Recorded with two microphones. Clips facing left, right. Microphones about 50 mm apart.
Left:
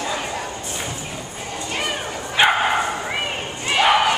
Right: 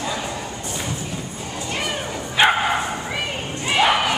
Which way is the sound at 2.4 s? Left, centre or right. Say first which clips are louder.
Even; centre.